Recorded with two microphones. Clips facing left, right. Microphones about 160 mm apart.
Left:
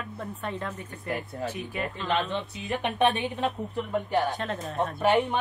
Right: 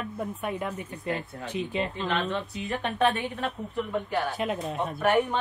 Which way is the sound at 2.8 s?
20° left (ahead or behind).